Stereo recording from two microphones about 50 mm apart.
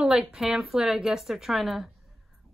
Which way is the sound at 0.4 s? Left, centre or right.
Centre.